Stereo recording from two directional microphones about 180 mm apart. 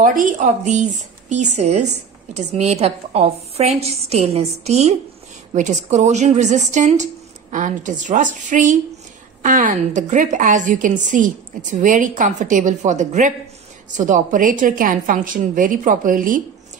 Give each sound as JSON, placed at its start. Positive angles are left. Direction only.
{"t": 0.0, "sound": "a woman's voice", "side_deg": -45}